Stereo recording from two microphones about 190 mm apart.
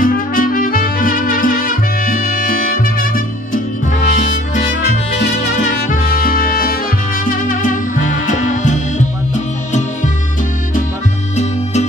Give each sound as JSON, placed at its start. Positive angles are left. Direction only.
{"t": 0.0, "sound": "music", "side_deg": 50}
{"t": 5.6, "sound": "music", "side_deg": 45}